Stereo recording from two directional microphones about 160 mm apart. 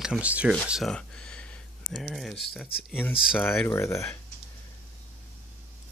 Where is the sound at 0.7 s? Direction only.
5° left (ahead or behind).